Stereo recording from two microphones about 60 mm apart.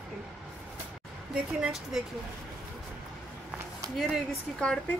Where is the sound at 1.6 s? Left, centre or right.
Centre.